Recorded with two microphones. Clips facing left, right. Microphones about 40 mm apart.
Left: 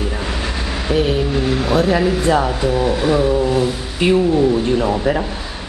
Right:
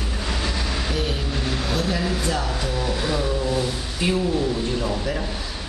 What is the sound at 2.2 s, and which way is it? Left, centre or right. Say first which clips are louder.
Speech: left 9 dB; left.